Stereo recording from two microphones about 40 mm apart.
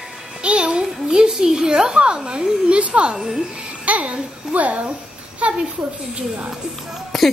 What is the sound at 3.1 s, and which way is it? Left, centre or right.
Speech, centre.